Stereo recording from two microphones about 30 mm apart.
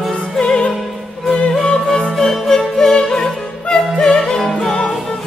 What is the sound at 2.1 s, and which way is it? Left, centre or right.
Music, centre.